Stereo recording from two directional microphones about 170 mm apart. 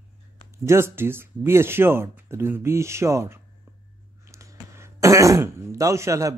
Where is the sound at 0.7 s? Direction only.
15° right (ahead or behind).